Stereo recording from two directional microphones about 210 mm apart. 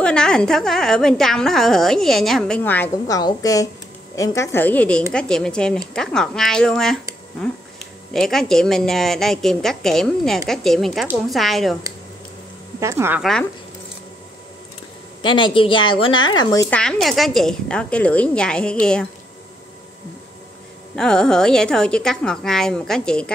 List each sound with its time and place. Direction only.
0.0 s a woman's voice: 5° left (ahead or behind)
12.8 s speech: 10° right (ahead or behind)
13.2 s a woman's voice: centre (ahead or behind)
15.2 s a woman's voice: 20° left (ahead or behind)
16.7 s a woman's voice: centre (ahead or behind)
20.9 s a woman's voice: 5° left (ahead or behind)